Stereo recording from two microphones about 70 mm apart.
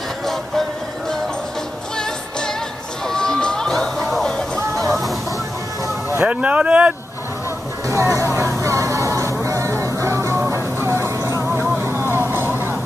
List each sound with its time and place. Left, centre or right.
3.1 s music: centre
6.2 s speech: centre
7.9 s speech: right
8.4 s music: right
11.8 s vehicle: right